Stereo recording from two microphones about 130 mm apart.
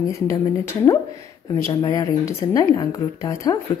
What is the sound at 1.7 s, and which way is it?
Speech, 30° left (ahead or behind).